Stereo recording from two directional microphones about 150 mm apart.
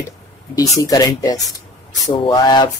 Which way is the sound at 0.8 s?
25° left (ahead or behind).